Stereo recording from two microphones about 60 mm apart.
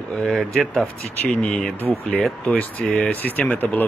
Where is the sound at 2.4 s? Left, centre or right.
Left.